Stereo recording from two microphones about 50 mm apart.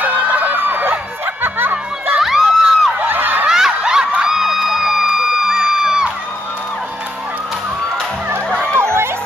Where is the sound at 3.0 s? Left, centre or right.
Right.